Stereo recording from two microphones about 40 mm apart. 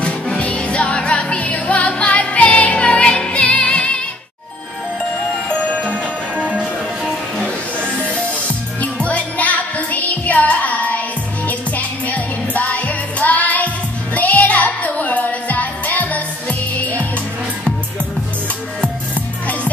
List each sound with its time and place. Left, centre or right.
0.0 s music: left
5.7 s music: left
8.1 s music: left